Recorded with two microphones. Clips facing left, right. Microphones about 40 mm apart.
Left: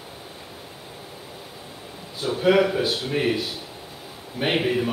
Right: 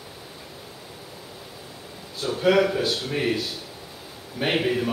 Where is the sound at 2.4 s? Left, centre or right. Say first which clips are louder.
Left 1 dB; centre.